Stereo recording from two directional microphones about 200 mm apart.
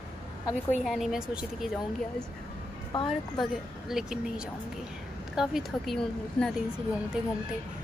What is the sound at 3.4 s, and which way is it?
Speech, centre (ahead or behind).